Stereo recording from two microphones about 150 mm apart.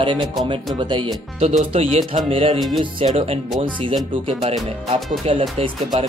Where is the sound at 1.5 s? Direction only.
45° right (ahead or behind).